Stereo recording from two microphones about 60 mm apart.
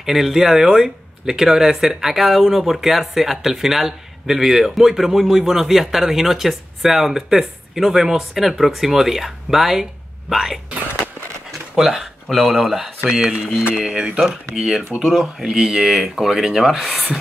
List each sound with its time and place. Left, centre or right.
0.0 s speech: centre
11.7 s a sound: centre
12.4 s speech: centre
13.8 s speech: centre